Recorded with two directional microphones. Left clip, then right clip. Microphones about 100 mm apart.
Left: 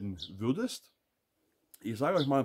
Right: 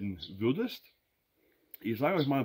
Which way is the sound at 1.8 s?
40° left (ahead or behind).